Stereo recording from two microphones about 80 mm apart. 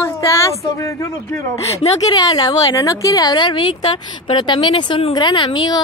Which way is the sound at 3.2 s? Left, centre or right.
Left.